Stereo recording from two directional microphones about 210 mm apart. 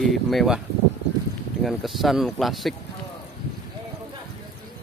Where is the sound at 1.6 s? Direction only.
Centre (ahead or behind).